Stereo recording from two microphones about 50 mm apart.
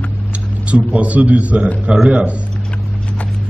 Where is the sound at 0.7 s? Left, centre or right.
Right.